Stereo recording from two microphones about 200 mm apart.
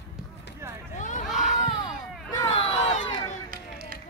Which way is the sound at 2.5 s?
30° left (ahead or behind).